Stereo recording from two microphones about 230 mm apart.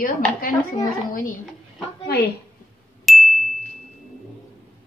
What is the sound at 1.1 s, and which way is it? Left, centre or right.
Speech, left.